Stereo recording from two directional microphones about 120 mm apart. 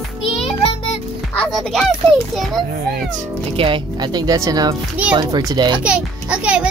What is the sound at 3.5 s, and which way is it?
Speech, 45° right (ahead or behind).